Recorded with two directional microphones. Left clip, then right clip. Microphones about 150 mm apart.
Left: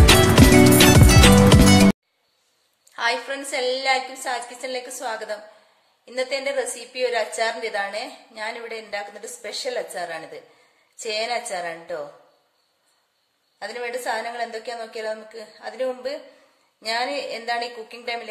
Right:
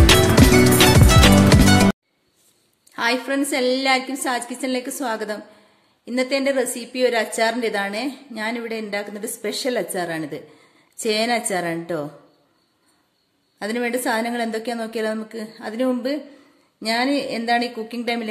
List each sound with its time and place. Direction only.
0.0 s music: centre (ahead or behind)
3.0 s a woman's voice: 25° right (ahead or behind)
13.6 s a woman's voice: 40° right (ahead or behind)